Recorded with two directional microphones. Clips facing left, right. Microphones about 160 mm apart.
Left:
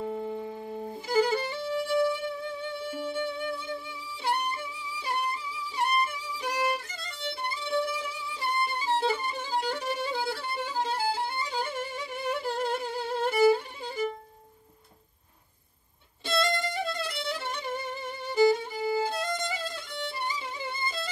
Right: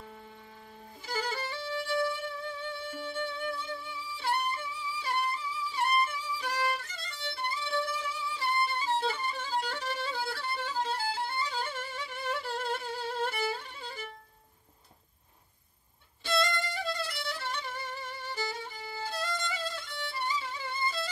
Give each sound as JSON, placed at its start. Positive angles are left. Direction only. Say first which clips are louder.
{"t": 0.3, "sound": "music", "louder": "left 16 dB", "side_deg": 30}
{"t": 12.6, "sound": "humming", "louder": "left 4 dB", "side_deg": 15}
{"t": 16.3, "sound": "violin", "louder": "left 2 dB", "side_deg": 20}